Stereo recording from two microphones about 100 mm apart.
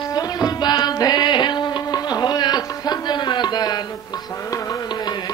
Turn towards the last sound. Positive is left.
turn(degrees=45)  # may be behind; listen again after turning